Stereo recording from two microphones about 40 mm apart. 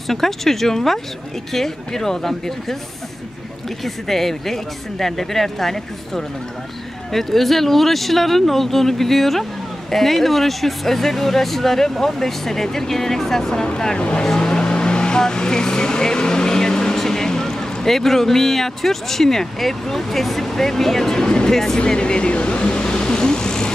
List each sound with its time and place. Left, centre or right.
0.1 s speech: centre
3.8 s speech: centre
13.9 s speech: left; by 21.3 s centre
21.3 s speech: left